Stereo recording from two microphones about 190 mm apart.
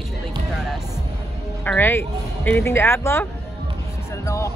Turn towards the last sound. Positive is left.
turn(degrees=15)  # may be behind; listen again after turning